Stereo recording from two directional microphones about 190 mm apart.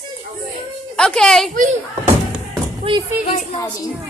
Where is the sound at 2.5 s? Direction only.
20° right (ahead or behind).